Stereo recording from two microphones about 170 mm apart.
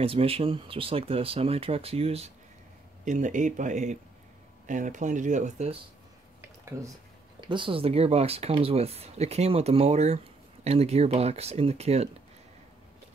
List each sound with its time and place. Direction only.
0.0 s speech: 35° right (ahead or behind)
3.1 s speech: 45° right (ahead or behind)
6.7 s speech: 15° right (ahead or behind)
7.3 s speech: 30° right (ahead or behind)